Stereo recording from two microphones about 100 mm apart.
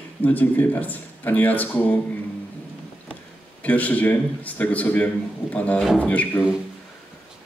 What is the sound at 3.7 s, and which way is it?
A man's voice, 15° left (ahead or behind).